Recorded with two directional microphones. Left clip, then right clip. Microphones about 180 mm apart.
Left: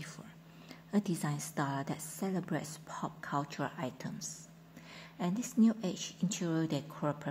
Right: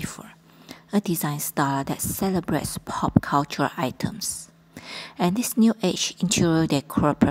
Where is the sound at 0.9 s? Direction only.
30° right (ahead or behind).